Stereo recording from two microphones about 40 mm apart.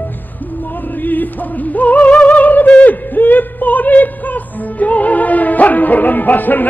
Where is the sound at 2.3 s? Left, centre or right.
Left.